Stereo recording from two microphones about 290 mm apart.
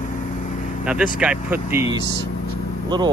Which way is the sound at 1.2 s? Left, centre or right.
Centre.